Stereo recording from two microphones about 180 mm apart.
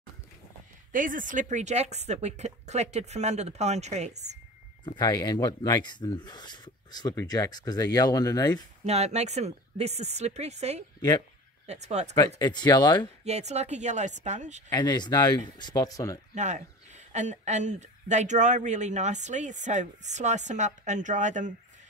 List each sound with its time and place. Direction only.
0.9 s speech: 45° right (ahead or behind)
4.8 s speech: 20° left (ahead or behind)
8.8 s speech: 35° right (ahead or behind)
11.0 s speech: 20° left (ahead or behind)
11.6 s speech: 40° right (ahead or behind)
12.4 s speech: 25° left (ahead or behind)
13.2 s speech: 40° right (ahead or behind)
14.7 s speech: 25° left (ahead or behind)
16.3 s speech: 40° right (ahead or behind)